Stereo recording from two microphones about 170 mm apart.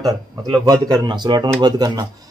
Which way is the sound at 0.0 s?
20° right (ahead or behind).